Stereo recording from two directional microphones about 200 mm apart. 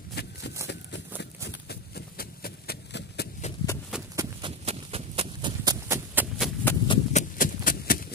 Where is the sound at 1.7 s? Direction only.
50° left (ahead or behind).